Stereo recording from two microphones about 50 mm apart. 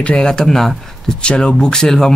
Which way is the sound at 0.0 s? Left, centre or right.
Centre.